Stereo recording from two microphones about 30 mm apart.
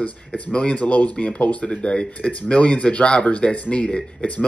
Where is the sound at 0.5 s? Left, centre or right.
Left.